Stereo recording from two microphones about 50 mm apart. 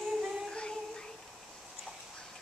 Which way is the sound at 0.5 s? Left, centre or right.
Centre.